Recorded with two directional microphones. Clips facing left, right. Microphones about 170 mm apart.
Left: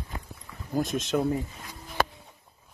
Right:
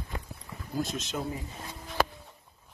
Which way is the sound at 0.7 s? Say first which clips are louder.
Left 6 dB; 50° left (ahead or behind).